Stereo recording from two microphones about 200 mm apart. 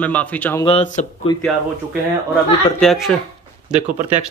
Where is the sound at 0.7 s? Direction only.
35° left (ahead or behind).